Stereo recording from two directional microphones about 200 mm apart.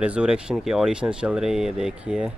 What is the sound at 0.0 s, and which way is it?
Speech, 5° right (ahead or behind).